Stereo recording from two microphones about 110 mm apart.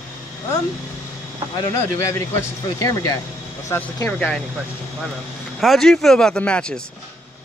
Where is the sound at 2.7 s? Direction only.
35° left (ahead or behind).